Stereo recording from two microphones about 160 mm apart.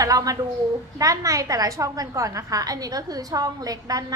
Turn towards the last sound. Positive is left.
turn(degrees=-25)  # may be behind; listen again after turning